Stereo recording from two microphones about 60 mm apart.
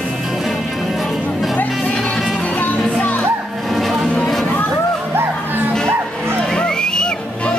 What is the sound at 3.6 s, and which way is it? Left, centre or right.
Music, centre.